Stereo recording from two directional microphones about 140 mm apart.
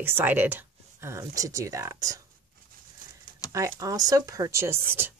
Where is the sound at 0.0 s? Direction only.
15° right (ahead or behind).